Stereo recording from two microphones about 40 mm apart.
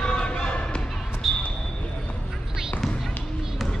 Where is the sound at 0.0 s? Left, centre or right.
Left.